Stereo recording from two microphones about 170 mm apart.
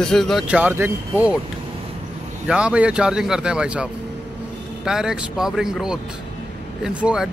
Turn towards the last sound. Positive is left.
turn(degrees=-5)  # may be behind; listen again after turning